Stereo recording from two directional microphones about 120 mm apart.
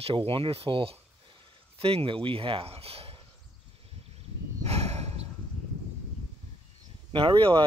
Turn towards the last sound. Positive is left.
turn(degrees=-45)  # may be behind; listen again after turning